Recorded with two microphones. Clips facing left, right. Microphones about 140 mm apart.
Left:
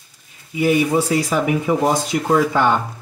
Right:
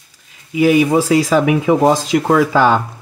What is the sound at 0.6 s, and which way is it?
Speech, 90° right.